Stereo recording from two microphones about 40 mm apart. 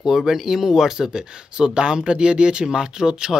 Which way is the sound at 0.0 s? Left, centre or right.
Centre.